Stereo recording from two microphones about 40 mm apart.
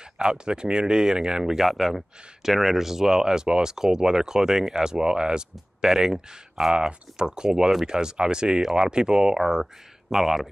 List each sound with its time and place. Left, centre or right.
0.2 s speech: centre